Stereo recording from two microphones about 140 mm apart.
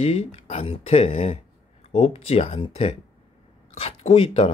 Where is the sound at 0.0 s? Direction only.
45° left (ahead or behind).